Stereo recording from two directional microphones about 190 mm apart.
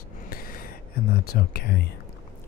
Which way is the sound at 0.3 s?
50° left (ahead or behind).